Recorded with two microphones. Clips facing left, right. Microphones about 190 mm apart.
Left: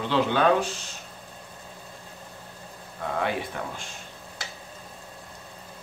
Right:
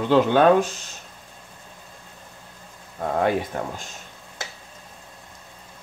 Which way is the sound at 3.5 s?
40° right (ahead or behind).